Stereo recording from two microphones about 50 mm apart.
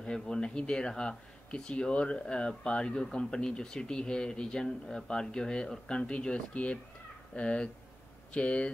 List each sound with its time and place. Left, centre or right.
0.0 s speech: centre